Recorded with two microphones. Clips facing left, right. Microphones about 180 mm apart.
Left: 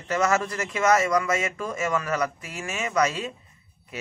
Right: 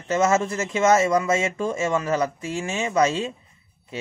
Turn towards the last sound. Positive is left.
turn(degrees=-25)  # may be behind; listen again after turning